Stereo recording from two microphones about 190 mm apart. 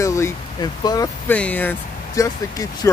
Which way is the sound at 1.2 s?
10° left (ahead or behind).